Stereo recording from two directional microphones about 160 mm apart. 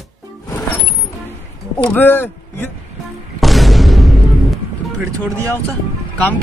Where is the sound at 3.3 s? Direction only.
Centre (ahead or behind).